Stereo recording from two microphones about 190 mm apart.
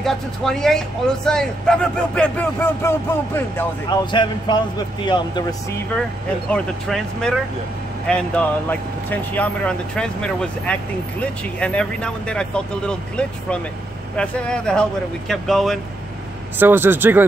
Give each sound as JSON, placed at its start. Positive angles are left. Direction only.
{"t": 0.0, "sound": "speech", "side_deg": 0}
{"t": 3.9, "sound": "a man's voice", "side_deg": 25}
{"t": 6.5, "sound": "speech", "side_deg": 5}
{"t": 16.5, "sound": "speech", "side_deg": -10}